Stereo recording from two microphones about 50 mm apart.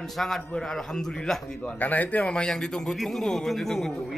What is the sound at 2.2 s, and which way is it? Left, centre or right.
A man's voice, centre.